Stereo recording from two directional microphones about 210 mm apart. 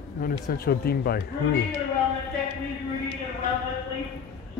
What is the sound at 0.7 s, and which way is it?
Speech, 45° left (ahead or behind).